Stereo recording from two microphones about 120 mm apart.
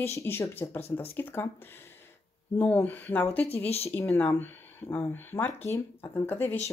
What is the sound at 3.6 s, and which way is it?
Speech, 60° left (ahead or behind).